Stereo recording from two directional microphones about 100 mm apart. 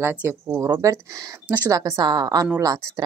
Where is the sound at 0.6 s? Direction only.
35° right (ahead or behind).